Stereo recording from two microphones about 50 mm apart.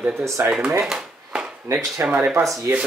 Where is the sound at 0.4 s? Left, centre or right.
Right.